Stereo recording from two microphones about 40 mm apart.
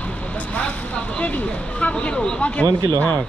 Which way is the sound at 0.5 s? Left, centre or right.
Left.